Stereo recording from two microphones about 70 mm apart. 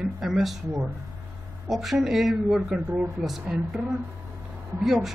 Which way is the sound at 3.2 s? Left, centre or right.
Centre.